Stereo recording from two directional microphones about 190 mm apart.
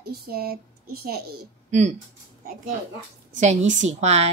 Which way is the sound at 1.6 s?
40° right (ahead or behind).